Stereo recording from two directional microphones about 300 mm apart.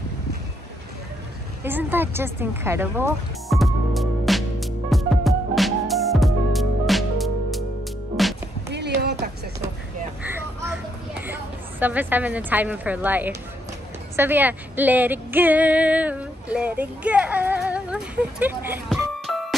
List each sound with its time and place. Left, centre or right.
1.6 s music: centre
8.7 s music: right
10.2 s a sound: centre
11.8 s a woman's voice: centre